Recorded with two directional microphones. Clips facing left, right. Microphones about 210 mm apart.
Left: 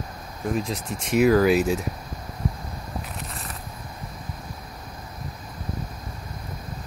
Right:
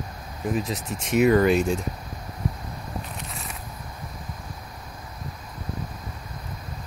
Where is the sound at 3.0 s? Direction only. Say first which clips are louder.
Left 2 dB; centre (ahead or behind).